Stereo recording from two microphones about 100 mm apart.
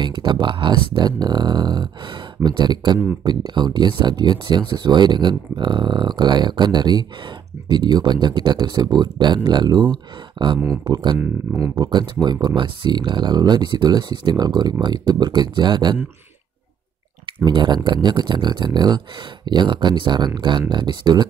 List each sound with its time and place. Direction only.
0.0 s speech: 45° right (ahead or behind)
11.1 s speech: 30° right (ahead or behind)
11.7 s speech: 45° right (ahead or behind)
17.8 s speech: 50° right (ahead or behind)